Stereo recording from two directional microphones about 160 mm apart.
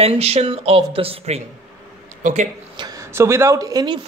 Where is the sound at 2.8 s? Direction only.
25° right (ahead or behind).